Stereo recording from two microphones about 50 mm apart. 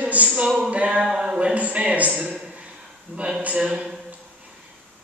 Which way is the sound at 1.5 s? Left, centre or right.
Right.